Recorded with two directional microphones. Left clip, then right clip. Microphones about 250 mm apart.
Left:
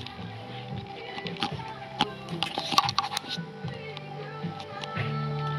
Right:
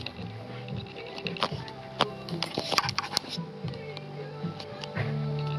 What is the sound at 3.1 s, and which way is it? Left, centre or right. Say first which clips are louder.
Music: even; right.